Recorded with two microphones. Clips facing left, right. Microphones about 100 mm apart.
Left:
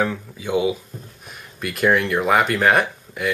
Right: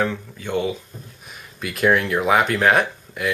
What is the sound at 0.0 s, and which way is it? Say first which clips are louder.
Speech: left 1 dB; 5° left (ahead or behind).